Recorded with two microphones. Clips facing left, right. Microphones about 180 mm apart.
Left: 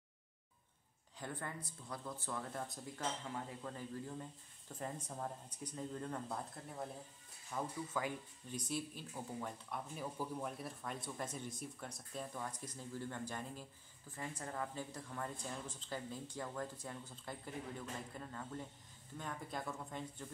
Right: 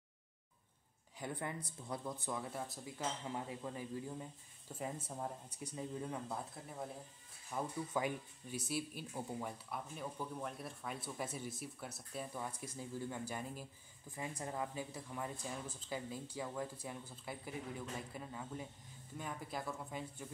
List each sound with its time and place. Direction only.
1.2 s speech: 15° right (ahead or behind)
3.3 s speech: 15° right (ahead or behind)
7.5 s speech: 15° right (ahead or behind)
9.9 s speech: 5° left (ahead or behind)